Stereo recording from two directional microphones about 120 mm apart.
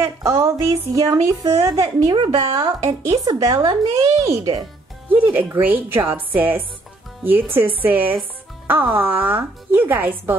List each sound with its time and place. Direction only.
0.0 s a woman's voice: 25° right (ahead or behind); by 2.7 s 45° right (ahead or behind)
2.9 s speech: 30° right (ahead or behind)
5.1 s speech: 15° right (ahead or behind)